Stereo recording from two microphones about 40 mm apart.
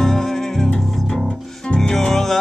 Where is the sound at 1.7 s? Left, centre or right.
Centre.